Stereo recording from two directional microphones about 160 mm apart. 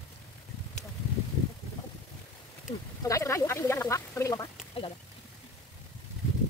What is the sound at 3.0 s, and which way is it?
Speech, 20° left (ahead or behind).